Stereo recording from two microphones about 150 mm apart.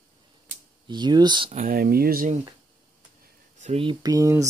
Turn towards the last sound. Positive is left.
turn(degrees=-20)  # may be behind; listen again after turning